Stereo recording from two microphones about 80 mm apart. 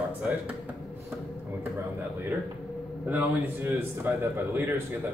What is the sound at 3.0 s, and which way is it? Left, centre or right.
A man's voice, right.